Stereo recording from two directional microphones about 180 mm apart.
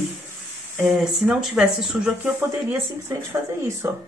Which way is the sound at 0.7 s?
Centre (ahead or behind).